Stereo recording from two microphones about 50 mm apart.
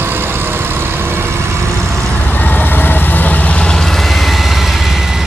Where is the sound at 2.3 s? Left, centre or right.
Left.